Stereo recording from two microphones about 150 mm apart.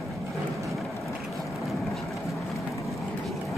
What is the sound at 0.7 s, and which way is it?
Vehicle, centre (ahead or behind).